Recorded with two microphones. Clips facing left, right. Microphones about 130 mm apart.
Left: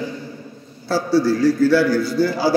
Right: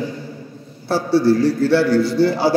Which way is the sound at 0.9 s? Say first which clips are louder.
Right 1 dB; 60° right (ahead or behind).